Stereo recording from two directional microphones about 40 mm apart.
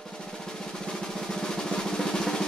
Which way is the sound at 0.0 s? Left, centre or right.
Centre.